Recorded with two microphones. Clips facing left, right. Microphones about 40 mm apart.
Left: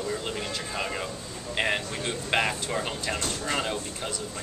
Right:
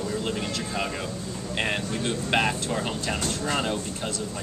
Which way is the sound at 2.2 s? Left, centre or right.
Centre.